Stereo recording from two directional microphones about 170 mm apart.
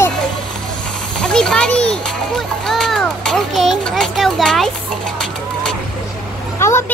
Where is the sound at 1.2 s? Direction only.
5° left (ahead or behind).